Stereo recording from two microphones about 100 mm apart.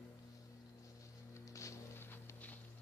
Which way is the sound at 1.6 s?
30° left (ahead or behind).